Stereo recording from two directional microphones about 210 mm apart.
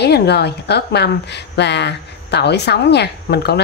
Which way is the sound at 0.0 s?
50° left (ahead or behind).